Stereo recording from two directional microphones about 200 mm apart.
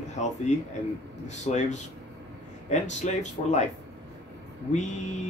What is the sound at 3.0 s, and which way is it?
Speech, 35° left (ahead or behind).